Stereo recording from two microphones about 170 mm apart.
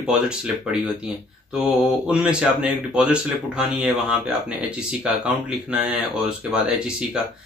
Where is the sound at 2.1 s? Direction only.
5° right (ahead or behind).